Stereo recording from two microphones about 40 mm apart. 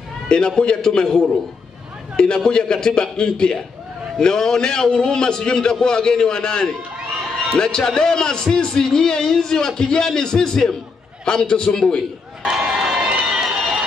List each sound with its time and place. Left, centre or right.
0.3 s a man's voice: left
12.4 s a sound: centre
13.3 s run: centre